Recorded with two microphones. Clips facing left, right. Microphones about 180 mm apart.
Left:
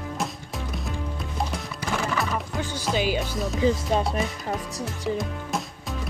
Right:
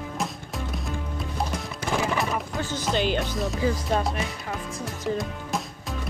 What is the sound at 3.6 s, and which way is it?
Music, 20° left (ahead or behind).